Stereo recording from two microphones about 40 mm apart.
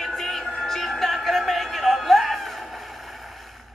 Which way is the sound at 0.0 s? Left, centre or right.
Centre.